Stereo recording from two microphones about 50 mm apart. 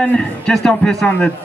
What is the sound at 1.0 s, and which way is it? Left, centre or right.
Speech, left.